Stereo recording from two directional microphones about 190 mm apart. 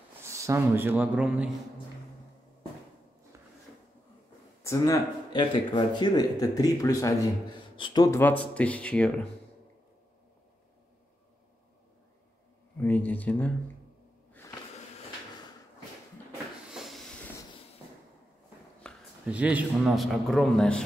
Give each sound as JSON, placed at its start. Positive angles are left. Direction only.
{"t": 0.2, "sound": "speech", "side_deg": -15}
{"t": 4.6, "sound": "speech", "side_deg": 15}
{"t": 12.8, "sound": "speech", "side_deg": 10}
{"t": 16.7, "sound": "a sound", "side_deg": 0}
{"t": 18.8, "sound": "a sound", "side_deg": 5}
{"t": 19.2, "sound": "a man's voice", "side_deg": -5}